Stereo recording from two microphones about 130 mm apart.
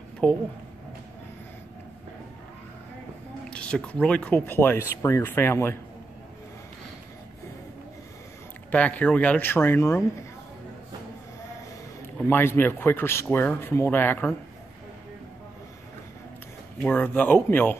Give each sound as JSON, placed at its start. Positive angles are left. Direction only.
{"t": 0.2, "sound": "speech", "side_deg": 10}
{"t": 3.4, "sound": "speech", "side_deg": 10}
{"t": 8.7, "sound": "speech", "side_deg": 10}
{"t": 12.3, "sound": "speech", "side_deg": 15}
{"t": 16.8, "sound": "speech", "side_deg": 15}